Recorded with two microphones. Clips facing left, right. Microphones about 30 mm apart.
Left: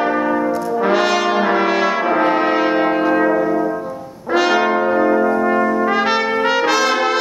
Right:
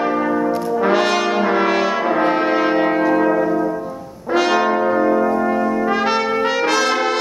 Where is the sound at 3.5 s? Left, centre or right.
Centre.